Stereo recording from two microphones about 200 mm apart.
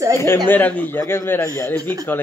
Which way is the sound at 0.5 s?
10° left (ahead or behind).